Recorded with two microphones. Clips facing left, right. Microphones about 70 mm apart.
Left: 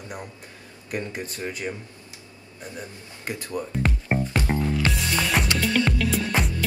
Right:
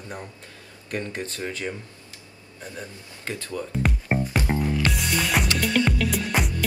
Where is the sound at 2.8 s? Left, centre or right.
Centre.